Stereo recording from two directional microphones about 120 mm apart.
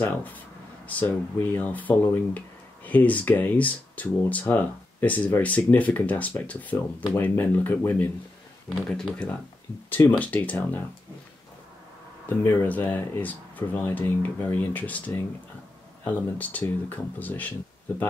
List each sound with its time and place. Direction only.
0.0 s speech: 15° left (ahead or behind)
8.6 s speech: 5° left (ahead or behind)
12.4 s speech: 15° left (ahead or behind)